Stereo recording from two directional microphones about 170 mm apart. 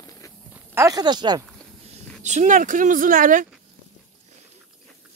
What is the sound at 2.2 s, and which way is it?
Speech, 45° right (ahead or behind).